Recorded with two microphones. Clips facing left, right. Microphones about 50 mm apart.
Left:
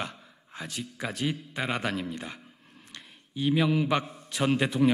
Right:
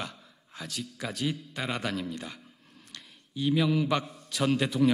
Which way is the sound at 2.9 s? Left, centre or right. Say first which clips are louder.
Left 1 dB; left.